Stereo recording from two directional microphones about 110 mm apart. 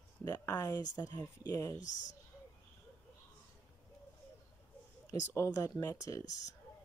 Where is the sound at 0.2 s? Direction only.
25° left (ahead or behind).